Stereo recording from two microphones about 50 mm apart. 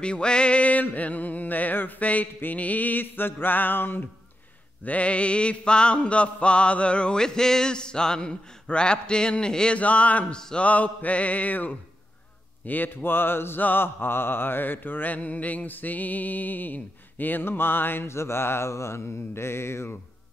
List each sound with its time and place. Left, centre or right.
0.0 s mantra: centre; by 4.0 s left
4.8 s mantra: left
9.8 s mantra: left
10.3 s a sound: centre
10.6 s mantra: left
18.0 s mantra: left
18.7 s mantra: left